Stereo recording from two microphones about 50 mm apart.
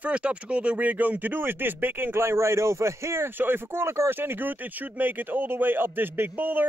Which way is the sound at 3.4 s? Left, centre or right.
Right.